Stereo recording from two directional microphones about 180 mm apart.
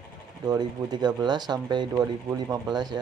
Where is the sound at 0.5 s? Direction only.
25° right (ahead or behind).